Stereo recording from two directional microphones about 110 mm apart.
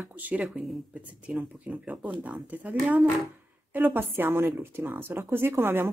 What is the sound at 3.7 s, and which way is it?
Speech, 15° right (ahead or behind).